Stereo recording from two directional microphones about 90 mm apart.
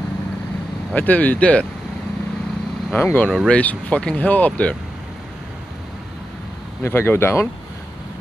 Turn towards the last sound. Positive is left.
turn(degrees=25)  # may be behind; listen again after turning